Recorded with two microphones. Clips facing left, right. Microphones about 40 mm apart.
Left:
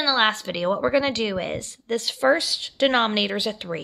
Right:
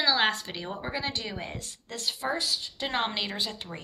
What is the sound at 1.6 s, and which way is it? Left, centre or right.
Speech, left.